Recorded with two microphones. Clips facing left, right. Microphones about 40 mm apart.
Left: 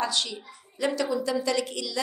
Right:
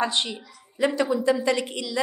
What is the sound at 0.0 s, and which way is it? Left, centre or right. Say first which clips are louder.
A woman's voice: right 3 dB; right.